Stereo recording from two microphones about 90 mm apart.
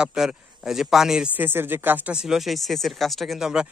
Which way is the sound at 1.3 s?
25° right (ahead or behind).